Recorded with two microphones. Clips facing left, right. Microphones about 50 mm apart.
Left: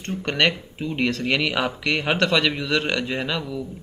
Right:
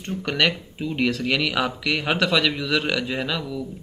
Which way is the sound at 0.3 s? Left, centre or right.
Centre.